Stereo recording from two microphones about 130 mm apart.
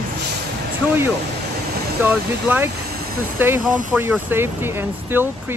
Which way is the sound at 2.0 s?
15° right (ahead or behind).